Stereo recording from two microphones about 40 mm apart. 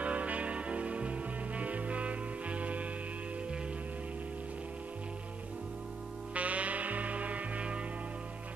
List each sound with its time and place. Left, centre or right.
0.0 s music: right
6.3 s music: right